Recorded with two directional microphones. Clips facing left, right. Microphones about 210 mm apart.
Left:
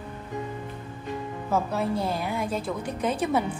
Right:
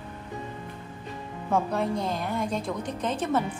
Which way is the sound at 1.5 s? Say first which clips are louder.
Even; 5° left (ahead or behind).